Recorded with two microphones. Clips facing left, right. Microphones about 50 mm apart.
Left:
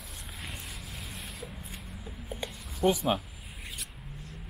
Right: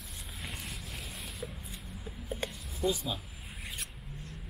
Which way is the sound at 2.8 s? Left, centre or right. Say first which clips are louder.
Left 5 dB; left.